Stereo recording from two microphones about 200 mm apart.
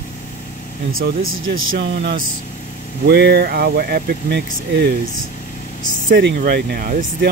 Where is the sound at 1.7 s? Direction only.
55° right (ahead or behind).